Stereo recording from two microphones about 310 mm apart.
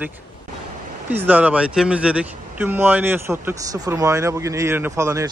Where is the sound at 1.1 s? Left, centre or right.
Centre.